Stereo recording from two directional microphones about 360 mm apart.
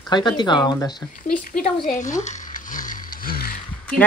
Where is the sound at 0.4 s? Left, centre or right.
Centre.